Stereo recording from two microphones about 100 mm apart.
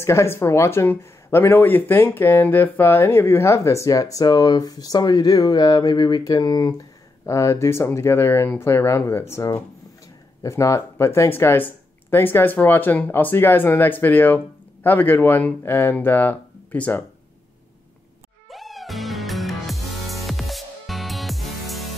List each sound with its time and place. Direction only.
0.0 s speech: 25° left (ahead or behind)
7.2 s speech: 30° left (ahead or behind)
18.5 s music: centre (ahead or behind)